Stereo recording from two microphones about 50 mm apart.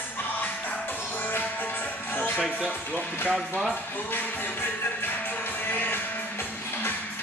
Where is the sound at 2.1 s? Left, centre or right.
Left.